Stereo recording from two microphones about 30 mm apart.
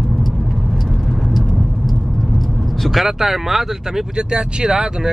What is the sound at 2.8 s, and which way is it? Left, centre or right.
Speech, centre.